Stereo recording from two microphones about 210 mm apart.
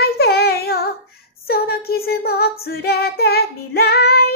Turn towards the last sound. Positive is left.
turn(degrees=50)  # may be behind; listen again after turning